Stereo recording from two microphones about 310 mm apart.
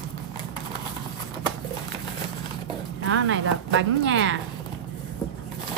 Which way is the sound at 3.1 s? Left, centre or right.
Right.